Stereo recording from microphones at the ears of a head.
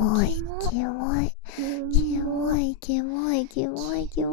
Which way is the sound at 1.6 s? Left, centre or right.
Right.